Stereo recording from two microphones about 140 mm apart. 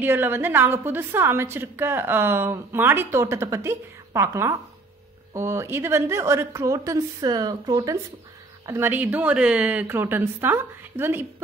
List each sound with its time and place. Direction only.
0.0 s a woman's voice: 15° right (ahead or behind)